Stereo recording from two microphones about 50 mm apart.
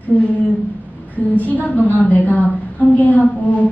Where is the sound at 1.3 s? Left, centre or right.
Left.